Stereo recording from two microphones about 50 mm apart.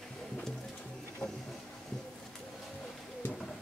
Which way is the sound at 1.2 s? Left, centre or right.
Centre.